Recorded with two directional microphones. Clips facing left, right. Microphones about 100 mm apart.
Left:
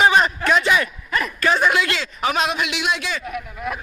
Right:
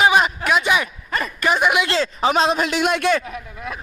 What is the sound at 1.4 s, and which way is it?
Speech, 15° right (ahead or behind).